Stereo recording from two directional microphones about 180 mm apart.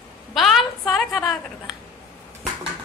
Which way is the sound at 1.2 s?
20° left (ahead or behind).